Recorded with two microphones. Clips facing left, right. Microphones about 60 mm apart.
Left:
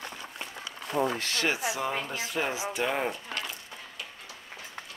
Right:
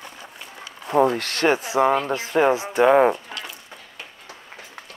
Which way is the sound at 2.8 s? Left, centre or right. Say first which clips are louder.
Right 15 dB; right.